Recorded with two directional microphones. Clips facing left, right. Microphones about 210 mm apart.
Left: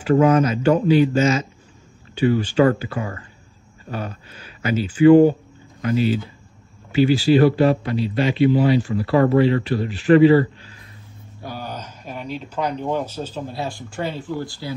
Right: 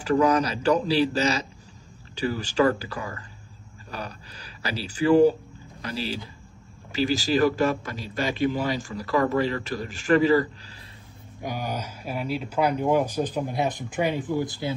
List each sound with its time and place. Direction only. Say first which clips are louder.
0.2 s speech: left 6 dB; 35° right (ahead or behind)
11.4 s speech: right 1 dB; 15° right (ahead or behind)